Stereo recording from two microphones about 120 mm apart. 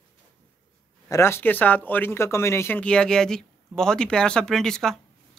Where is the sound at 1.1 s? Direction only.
20° left (ahead or behind).